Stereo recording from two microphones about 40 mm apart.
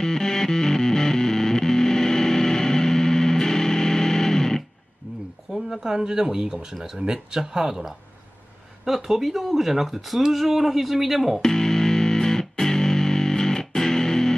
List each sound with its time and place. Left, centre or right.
0.0 s music: centre
5.0 s a sound: right
5.5 s speech: centre
11.4 s music: centre